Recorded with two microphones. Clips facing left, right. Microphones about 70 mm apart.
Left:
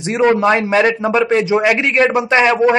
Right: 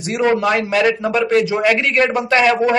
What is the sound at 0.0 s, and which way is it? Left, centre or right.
A man's voice, left.